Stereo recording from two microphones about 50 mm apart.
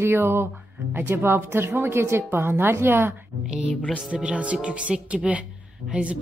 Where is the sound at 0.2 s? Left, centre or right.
Right.